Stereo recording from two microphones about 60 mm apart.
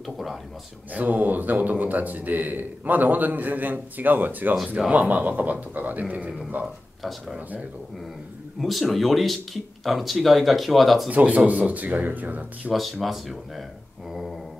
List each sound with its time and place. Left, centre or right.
0.0 s speech: centre
0.9 s a man's voice: right
7.0 s speech: centre
8.5 s speech: centre
11.1 s a man's voice: right
12.7 s speech: centre
14.1 s a sound: centre